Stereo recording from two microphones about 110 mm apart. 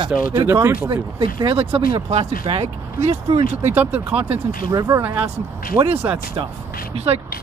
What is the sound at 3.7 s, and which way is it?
Speech, 15° right (ahead or behind).